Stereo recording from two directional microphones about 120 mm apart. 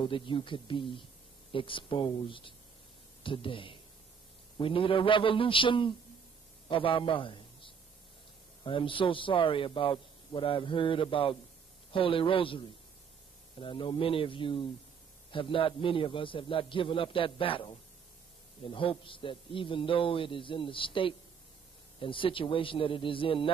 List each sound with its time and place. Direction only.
0.0 s a man's voice: 45° left (ahead or behind)
13.6 s a man's voice: 45° left (ahead or behind)